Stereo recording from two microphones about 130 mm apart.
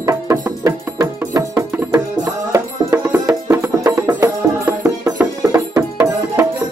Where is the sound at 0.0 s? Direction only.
25° right (ahead or behind).